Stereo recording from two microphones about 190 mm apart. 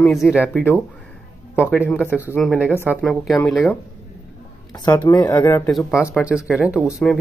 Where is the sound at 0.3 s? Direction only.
Centre (ahead or behind).